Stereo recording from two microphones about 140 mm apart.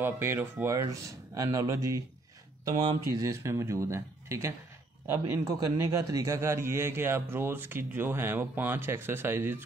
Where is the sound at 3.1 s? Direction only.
20° right (ahead or behind).